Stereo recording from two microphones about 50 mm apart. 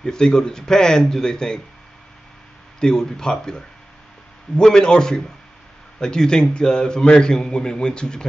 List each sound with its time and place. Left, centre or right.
0.0 s a man's voice: centre
2.8 s a man's voice: centre